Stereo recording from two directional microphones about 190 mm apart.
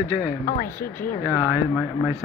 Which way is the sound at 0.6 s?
10° left (ahead or behind).